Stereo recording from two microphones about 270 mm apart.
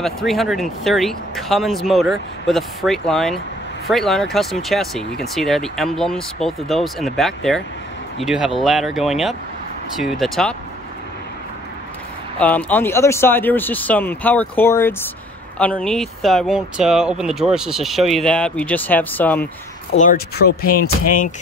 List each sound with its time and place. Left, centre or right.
0.0 s speech: centre
12.4 s speech: centre
19.4 s speech: left